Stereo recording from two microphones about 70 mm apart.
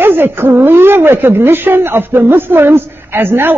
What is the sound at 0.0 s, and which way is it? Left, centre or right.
Speech, right.